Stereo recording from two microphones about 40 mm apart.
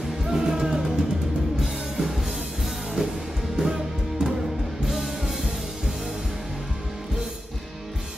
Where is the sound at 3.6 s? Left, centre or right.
Centre.